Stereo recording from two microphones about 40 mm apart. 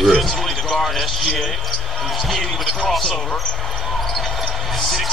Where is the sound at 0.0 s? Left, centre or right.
Centre.